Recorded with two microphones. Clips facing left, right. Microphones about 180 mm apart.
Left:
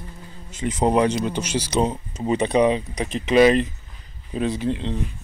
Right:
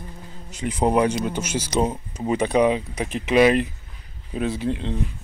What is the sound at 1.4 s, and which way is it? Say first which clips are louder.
Speech: left 2 dB; 50° right (ahead or behind).